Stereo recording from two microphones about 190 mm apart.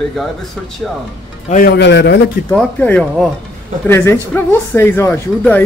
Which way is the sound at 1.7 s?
65° left (ahead or behind).